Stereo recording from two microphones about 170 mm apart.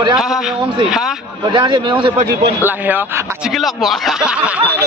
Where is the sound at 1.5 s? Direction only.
30° right (ahead or behind).